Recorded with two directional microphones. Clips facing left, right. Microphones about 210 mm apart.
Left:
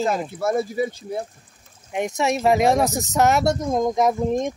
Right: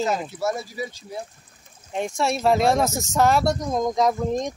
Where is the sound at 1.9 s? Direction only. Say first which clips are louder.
Left 2 dB; 15° left (ahead or behind).